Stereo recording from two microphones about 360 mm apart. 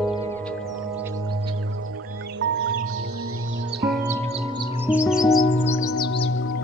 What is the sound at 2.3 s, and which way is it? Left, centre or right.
Music, right.